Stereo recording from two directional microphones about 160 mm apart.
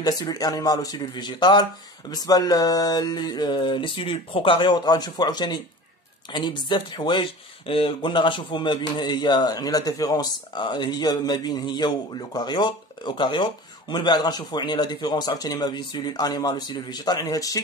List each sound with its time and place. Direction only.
0.0 s speech: 25° left (ahead or behind)